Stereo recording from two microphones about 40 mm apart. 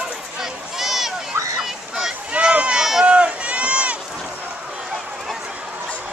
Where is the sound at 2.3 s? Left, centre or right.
Right.